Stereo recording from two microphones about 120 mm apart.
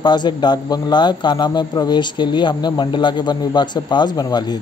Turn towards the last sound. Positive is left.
turn(degrees=35)  # may be behind; listen again after turning